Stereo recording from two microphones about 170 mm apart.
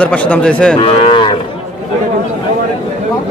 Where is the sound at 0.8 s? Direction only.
35° left (ahead or behind).